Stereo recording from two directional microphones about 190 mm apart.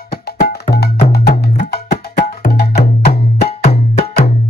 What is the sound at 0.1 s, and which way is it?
Music, 55° left (ahead or behind).